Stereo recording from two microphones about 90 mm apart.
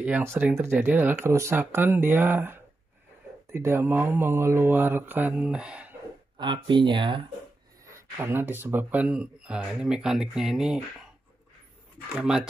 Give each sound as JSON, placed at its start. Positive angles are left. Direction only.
{"t": 0.4, "sound": "speech", "side_deg": -20}
{"t": 6.3, "sound": "speech", "side_deg": -60}
{"t": 7.9, "sound": "speech", "side_deg": -25}
{"t": 9.0, "sound": "speech", "side_deg": -10}
{"t": 12.2, "sound": "speech", "side_deg": -5}